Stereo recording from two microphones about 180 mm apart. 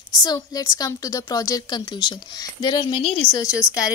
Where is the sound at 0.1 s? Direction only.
20° left (ahead or behind).